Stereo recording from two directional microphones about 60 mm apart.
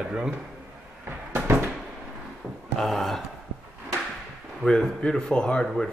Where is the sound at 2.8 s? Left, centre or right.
Centre.